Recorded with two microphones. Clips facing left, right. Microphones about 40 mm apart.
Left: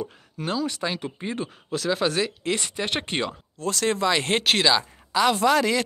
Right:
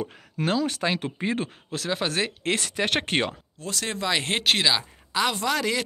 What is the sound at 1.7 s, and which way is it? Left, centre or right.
Speech, right.